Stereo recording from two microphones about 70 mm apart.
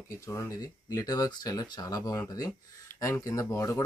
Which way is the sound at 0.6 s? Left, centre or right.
Left.